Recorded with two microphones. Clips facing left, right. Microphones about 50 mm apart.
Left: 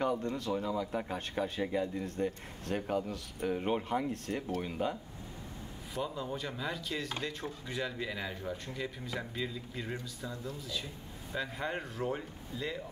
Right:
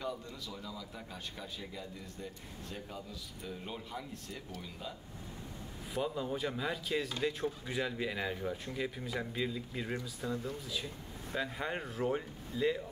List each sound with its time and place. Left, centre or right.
0.0 s speech: left
6.0 s speech: centre
10.2 s speech: right
11.3 s speech: centre